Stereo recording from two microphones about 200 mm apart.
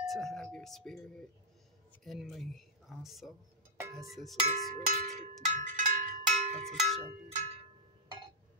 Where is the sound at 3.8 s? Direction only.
15° right (ahead or behind).